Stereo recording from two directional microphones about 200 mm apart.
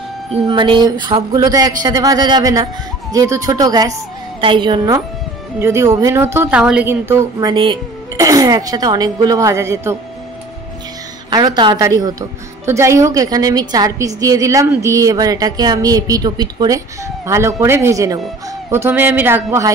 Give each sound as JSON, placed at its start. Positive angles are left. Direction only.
{"t": 0.3, "sound": "a woman's voice", "side_deg": -25}
{"t": 11.2, "sound": "a woman's voice", "side_deg": -20}